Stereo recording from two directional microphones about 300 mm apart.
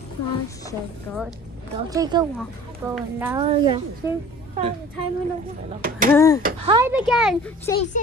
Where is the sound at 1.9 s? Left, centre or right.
Centre.